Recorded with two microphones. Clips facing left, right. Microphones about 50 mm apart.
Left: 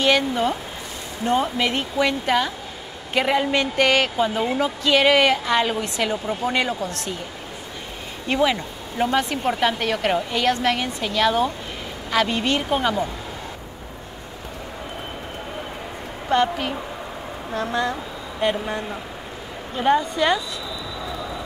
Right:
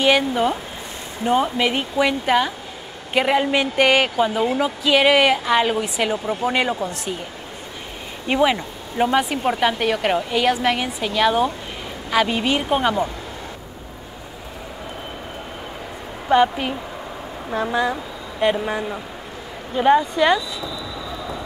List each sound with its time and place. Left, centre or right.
0.0 s speech: centre
8.3 s speech: centre
16.3 s a woman's voice: centre